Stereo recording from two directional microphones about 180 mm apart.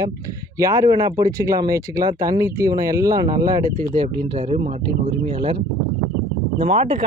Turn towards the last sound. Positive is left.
turn(degrees=-35)  # may be behind; listen again after turning